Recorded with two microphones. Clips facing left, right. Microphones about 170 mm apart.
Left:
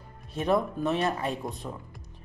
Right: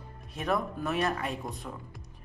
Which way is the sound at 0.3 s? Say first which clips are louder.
Left 5 dB; 30° left (ahead or behind).